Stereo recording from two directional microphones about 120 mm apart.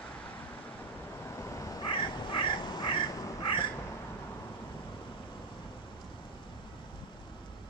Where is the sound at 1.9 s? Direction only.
40° left (ahead or behind).